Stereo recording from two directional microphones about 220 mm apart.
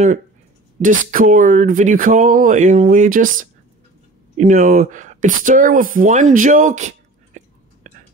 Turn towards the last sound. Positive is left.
turn(degrees=-30)  # may be behind; listen again after turning